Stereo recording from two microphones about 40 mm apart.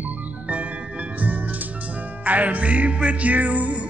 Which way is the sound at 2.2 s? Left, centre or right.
Right.